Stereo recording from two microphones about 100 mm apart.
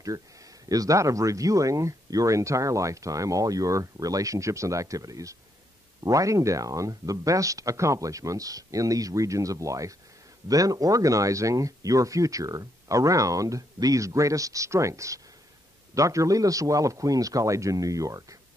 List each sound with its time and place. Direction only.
0.7 s speech: 35° right (ahead or behind)